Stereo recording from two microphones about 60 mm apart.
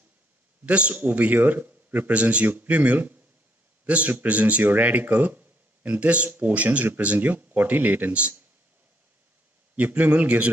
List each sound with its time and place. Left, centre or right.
0.7 s a man's voice: right
9.8 s speech: right